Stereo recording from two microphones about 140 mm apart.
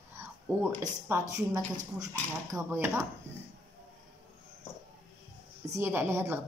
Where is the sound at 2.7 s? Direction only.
20° right (ahead or behind).